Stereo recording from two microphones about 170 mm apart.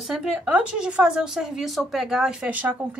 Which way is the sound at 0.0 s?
5° right (ahead or behind).